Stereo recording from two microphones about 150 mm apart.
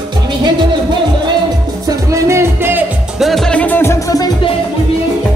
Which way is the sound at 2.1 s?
20° right (ahead or behind).